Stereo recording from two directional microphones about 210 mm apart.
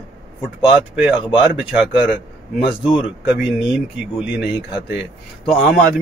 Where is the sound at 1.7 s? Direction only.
5° right (ahead or behind).